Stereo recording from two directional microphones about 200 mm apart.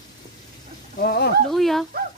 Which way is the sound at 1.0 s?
50° left (ahead or behind).